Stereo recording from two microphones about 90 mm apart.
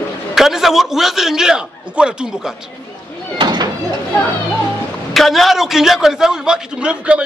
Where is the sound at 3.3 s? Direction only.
50° right (ahead or behind).